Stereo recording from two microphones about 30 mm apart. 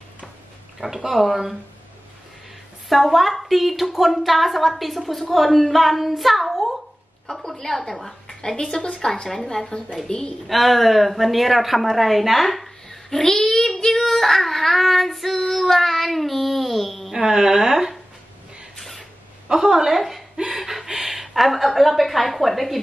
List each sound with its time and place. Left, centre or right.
0.7 s speech: centre
2.9 s a woman's voice: centre
7.3 s a sound: left
7.9 s a woman's voice: centre
8.4 s a woman's voice: left; by 9.7 s centre
10.0 s a woman's voice: left
10.4 s a woman's voice: centre
12.8 s a sound: centre
13.8 s child singing: centre
17.3 s speech: right
19.5 s speech: centre
20.0 s a sound: centre
20.5 s a woman's voice: centre